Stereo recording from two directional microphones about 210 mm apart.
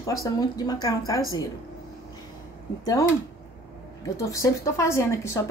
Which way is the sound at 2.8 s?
15° left (ahead or behind).